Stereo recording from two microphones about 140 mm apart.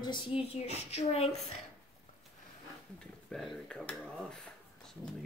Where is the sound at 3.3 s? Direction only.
5° left (ahead or behind).